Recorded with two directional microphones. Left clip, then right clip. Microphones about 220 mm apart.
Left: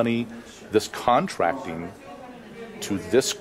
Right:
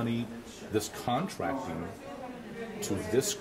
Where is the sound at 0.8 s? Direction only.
Centre (ahead or behind).